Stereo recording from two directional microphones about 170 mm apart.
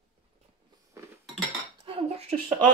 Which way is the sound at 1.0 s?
15° right (ahead or behind).